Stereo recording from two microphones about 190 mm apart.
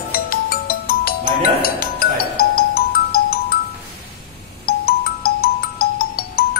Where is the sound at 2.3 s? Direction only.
50° left (ahead or behind).